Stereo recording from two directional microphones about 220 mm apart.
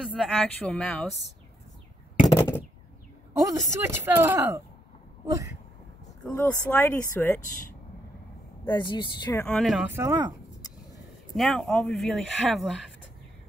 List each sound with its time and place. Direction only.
0.0 s speech: centre (ahead or behind)
2.2 s a sound: 10° left (ahead or behind)
3.4 s speech: 10° right (ahead or behind)
6.2 s speech: 10° left (ahead or behind)
8.9 s speech: 20° left (ahead or behind); by 9.8 s centre (ahead or behind)
9.9 s speech: 10° right (ahead or behind)
11.3 s speech: centre (ahead or behind)